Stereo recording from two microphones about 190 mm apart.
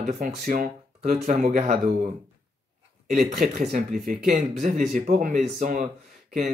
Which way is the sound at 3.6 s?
40° right (ahead or behind).